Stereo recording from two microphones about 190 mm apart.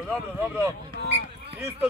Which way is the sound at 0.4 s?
15° right (ahead or behind).